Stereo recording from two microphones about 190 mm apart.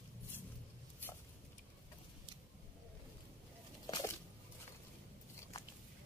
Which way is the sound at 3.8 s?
20° left (ahead or behind).